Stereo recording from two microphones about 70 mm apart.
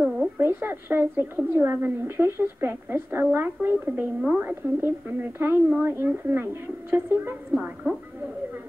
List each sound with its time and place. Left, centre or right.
0.4 s a woman's voice: right